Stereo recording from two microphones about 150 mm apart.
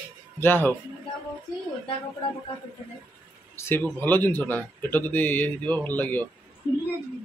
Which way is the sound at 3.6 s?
15° left (ahead or behind).